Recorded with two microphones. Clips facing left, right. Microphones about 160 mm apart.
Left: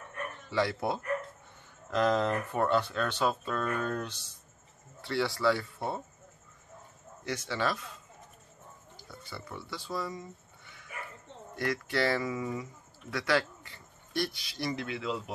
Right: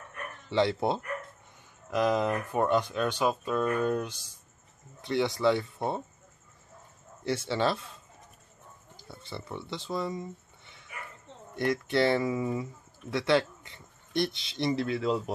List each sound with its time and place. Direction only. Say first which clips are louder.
0.5 s speech: right 4 dB; 25° right (ahead or behind)
1.9 s speech: right 1 dB; 10° right (ahead or behind)
7.2 s speech: right 4 dB; 30° right (ahead or behind)
9.1 s speech: right 4 dB; 25° right (ahead or behind)
14.9 s a man's voice: right 6 dB; 40° right (ahead or behind)